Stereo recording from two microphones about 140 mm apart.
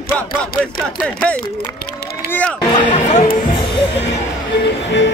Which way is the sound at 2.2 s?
10° left (ahead or behind).